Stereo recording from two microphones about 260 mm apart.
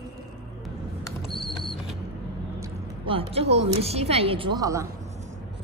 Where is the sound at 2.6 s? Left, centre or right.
Centre.